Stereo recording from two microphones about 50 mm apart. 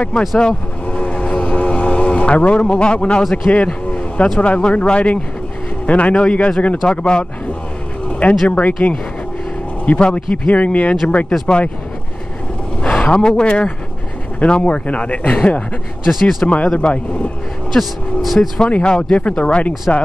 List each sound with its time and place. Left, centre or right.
0.4 s vehicle: centre
4.4 s speech: left
9.9 s speech: left
12.8 s a sound: left
13.4 s speech: left
16.1 s speech: centre
16.4 s speech: left
17.7 s speech: centre
18.6 s speech: left